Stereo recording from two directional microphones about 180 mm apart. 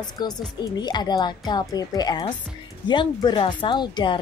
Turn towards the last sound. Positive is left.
turn(degrees=25)  # may be behind; listen again after turning